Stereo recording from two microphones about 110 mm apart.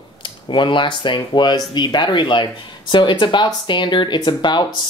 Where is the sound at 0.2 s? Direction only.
45° left (ahead or behind).